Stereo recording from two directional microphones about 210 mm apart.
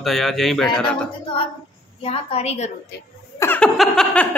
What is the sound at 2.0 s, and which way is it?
Speech, 30° left (ahead or behind).